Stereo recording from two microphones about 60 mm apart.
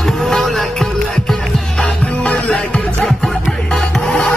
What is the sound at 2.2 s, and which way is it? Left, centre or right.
Music, left.